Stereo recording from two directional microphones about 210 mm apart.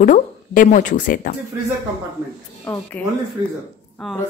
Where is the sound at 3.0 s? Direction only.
5° left (ahead or behind).